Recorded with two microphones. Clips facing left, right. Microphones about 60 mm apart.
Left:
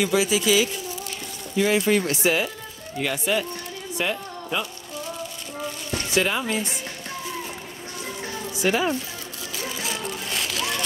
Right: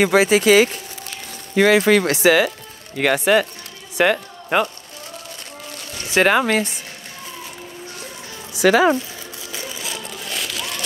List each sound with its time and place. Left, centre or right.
0.0 s speech: right
1.5 s speech: right
3.0 s a woman's voice: right
6.2 s speech: right
8.5 s speech: right
10.3 s a sound: centre